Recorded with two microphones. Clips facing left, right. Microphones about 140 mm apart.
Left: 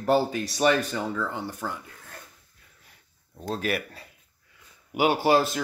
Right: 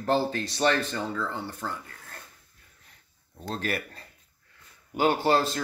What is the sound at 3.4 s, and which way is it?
A man's voice, 5° left (ahead or behind).